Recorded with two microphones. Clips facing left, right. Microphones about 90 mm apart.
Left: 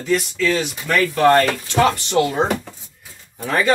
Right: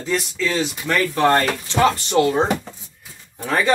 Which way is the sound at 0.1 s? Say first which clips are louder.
Left 3 dB; 30° right (ahead or behind).